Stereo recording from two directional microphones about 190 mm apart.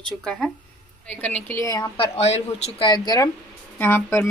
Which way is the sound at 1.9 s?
35° left (ahead or behind).